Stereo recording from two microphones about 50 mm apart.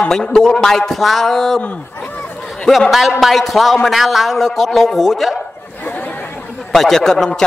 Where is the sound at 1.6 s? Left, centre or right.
Left.